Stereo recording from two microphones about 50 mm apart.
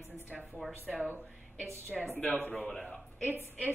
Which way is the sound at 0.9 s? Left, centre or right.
Centre.